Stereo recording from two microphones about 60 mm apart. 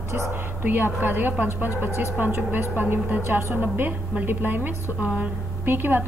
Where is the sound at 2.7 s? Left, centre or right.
Right.